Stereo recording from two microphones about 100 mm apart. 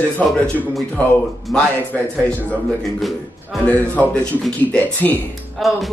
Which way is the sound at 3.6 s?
15° left (ahead or behind).